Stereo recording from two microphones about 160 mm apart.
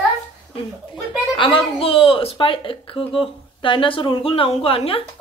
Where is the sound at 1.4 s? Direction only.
35° left (ahead or behind).